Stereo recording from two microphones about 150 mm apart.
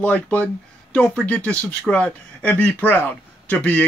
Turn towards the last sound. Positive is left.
turn(degrees=10)  # may be behind; listen again after turning